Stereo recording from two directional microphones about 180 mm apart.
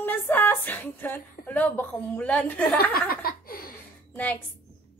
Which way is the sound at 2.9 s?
55° left (ahead or behind).